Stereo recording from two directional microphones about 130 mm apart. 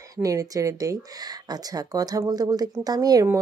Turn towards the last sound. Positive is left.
turn(degrees=-30)  # may be behind; listen again after turning